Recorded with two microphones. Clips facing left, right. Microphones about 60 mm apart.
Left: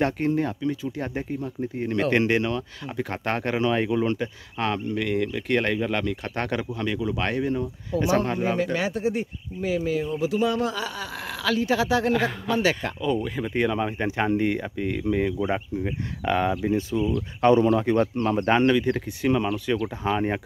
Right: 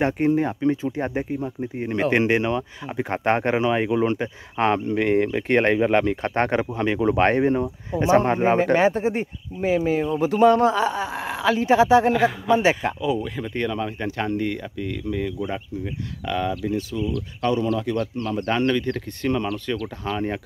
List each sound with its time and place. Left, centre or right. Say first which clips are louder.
0.0 s speech: right 3 dB; centre
0.6 s speech: right 5 dB; right
12.1 s a man's voice: right 4 dB; centre
12.4 s speech: right 5 dB; right
13.0 s speech: left 1 dB; centre
13.4 s speech: left 1 dB; centre
18.8 s speech: left 2 dB; centre